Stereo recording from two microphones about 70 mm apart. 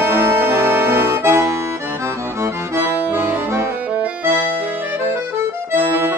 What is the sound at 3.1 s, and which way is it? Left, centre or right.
Accordion, right.